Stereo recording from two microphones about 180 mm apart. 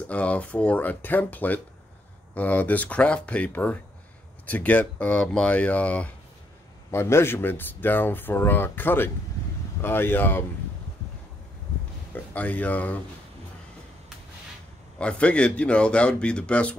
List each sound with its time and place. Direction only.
0.1 s speech: 5° left (ahead or behind)
12.1 s speech: 10° left (ahead or behind)
15.0 s speech: 5° left (ahead or behind)